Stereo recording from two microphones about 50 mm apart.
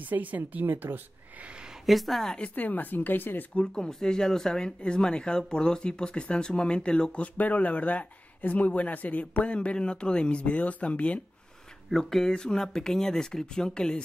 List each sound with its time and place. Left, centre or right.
0.0 s speech: right
1.9 s a woman's voice: centre
2.5 s speech: left
3.6 s speech: centre
7.3 s speech: left
11.9 s speech: centre